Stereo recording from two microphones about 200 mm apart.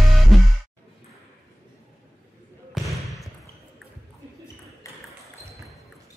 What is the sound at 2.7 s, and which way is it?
Basketball bounce, centre (ahead or behind).